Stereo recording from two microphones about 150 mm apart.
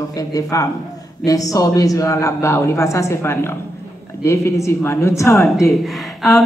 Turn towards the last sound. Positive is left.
turn(degrees=0)  # may be behind; listen again after turning